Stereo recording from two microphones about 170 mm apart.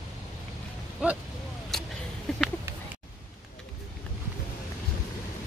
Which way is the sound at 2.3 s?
5° left (ahead or behind).